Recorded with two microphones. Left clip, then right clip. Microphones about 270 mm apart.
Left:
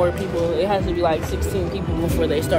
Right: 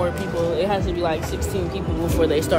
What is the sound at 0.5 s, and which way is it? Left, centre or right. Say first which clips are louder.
Speech: left 2 dB; centre.